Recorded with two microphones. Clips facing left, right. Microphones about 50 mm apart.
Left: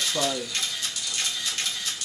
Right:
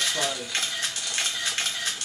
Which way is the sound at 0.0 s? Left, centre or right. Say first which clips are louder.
Left 1 dB; right.